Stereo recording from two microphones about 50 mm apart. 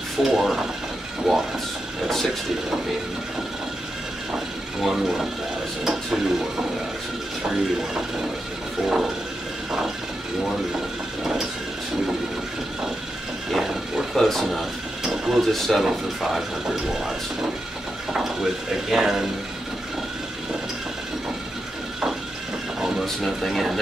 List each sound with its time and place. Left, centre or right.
0.2 s speech: centre
2.0 s speech: centre
4.8 s speech: centre
7.5 s speech: centre
13.5 s a sound: centre
14.1 s speech: centre
15.0 s a sound: centre
15.5 s speech: centre
15.8 s speech: centre
18.1 s speech: centre
23.2 s speech: centre